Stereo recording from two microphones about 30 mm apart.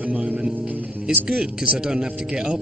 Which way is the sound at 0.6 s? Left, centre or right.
Right.